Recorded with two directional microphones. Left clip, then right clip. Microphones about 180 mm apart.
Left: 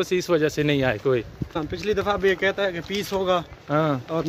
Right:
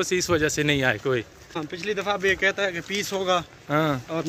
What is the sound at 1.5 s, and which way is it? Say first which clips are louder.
Speech: left 3 dB; 50° left (ahead or behind).